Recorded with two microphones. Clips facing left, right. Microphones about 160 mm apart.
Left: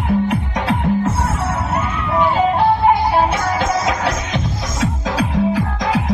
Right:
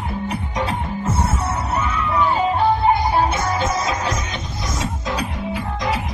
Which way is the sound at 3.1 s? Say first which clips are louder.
Left 3 dB; 90° left.